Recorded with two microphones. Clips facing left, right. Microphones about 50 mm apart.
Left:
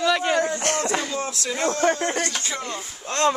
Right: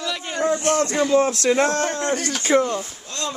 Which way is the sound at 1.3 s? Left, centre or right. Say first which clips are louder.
Right 6 dB; right.